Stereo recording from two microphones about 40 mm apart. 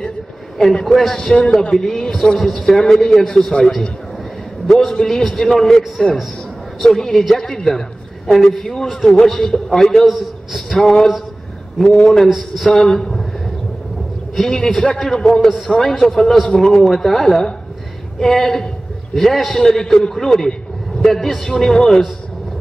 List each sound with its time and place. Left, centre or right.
1.3 s a man's voice: left; by 2.8 s centre
3.0 s a man's voice: centre
4.6 s a man's voice: centre
10.0 s a man's voice: centre
10.7 s a man's voice: centre
11.8 s a man's voice: left
12.3 s a man's voice: centre
14.3 s a man's voice: centre